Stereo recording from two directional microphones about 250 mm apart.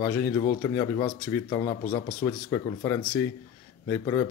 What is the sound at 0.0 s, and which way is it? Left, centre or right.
Speech, centre.